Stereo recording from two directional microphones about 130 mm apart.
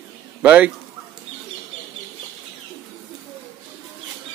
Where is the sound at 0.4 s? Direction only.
10° right (ahead or behind).